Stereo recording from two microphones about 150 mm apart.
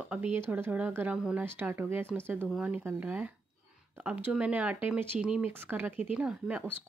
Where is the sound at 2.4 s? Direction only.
5° right (ahead or behind).